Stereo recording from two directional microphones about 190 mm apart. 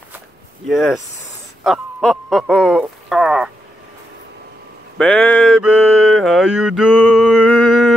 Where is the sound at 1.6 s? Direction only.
Centre (ahead or behind).